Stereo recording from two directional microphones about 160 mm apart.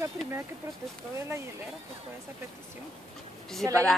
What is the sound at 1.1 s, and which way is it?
Speech, 15° right (ahead or behind).